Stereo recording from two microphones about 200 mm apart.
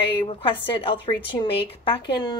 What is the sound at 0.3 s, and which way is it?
A woman's voice, 25° left (ahead or behind).